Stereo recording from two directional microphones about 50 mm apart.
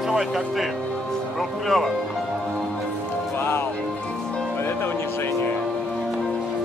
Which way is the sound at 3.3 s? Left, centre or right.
Left.